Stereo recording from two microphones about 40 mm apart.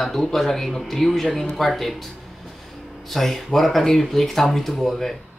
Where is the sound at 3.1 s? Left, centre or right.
Centre.